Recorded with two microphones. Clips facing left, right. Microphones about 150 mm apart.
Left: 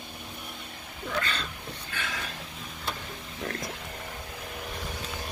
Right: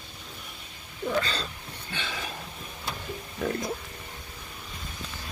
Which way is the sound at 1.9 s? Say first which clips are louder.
Right 1 dB; 25° right (ahead or behind).